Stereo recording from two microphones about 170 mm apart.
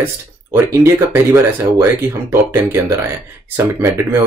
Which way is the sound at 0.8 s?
15° right (ahead or behind).